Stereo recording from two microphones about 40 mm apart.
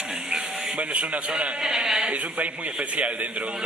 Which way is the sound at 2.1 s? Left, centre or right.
Right.